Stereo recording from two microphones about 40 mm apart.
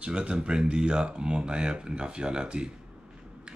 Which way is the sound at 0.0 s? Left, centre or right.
Right.